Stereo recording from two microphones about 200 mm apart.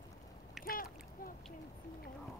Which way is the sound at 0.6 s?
45° left (ahead or behind).